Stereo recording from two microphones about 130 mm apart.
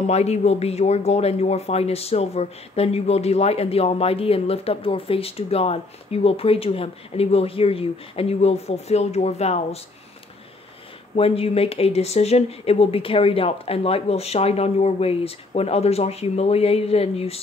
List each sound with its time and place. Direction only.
0.0 s speech: 55° left (ahead or behind)
11.1 s speech: 50° left (ahead or behind)